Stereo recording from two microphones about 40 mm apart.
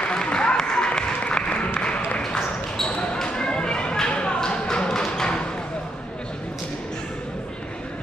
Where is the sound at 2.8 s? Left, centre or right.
Left.